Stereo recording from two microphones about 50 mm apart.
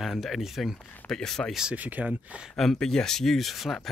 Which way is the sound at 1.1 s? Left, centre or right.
Centre.